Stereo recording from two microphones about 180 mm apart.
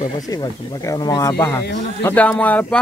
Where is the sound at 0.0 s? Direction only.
20° left (ahead or behind).